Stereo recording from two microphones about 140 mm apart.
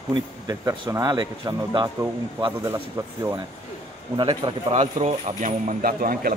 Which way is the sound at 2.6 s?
20° right (ahead or behind).